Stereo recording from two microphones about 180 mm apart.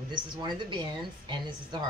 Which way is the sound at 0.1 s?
25° right (ahead or behind).